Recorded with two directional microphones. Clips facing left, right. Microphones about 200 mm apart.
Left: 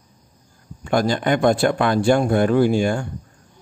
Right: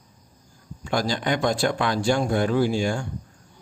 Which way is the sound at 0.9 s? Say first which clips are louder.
Left 5 dB; 55° left (ahead or behind).